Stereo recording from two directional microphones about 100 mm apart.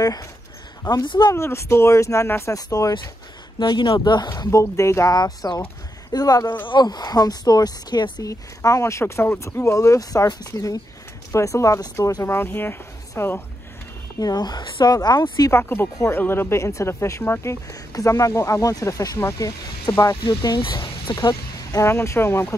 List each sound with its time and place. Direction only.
0.0 s speech: 40° left (ahead or behind)
0.8 s speech: 50° left (ahead or behind)
1.3 s speech: 25° left (ahead or behind)
2.5 s speech: 35° left (ahead or behind)
3.5 s speech: 50° left (ahead or behind)
4.5 s speech: 30° left (ahead or behind)
5.1 s a woman's voice: 45° left (ahead or behind); by 13.4 s 25° left (ahead or behind)
14.2 s speech: 45° left (ahead or behind)
15.5 s speech: 25° left (ahead or behind)
20.2 s speech: 50° left (ahead or behind); by 22.5 s 25° left (ahead or behind)